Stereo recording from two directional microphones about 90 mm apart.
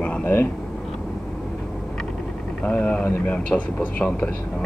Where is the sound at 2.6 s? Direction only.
15° left (ahead or behind).